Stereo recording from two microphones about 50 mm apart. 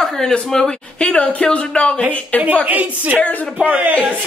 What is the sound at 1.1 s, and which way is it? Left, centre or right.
Speech, left.